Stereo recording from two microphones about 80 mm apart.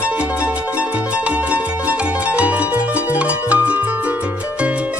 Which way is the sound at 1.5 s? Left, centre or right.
Centre.